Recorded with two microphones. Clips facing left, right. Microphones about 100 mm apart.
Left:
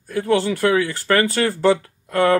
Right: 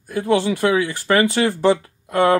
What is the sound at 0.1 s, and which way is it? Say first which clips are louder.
Speech: right 1 dB; 15° right (ahead or behind).